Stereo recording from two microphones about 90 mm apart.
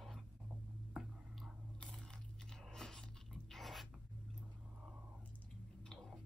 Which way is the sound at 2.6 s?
5° left (ahead or behind).